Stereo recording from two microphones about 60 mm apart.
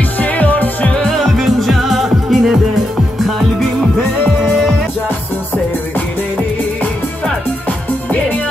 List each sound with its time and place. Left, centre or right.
0.2 s music: left
0.9 s music: centre